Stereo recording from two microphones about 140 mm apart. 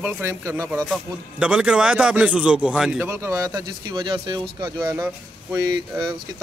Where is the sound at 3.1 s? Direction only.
20° right (ahead or behind).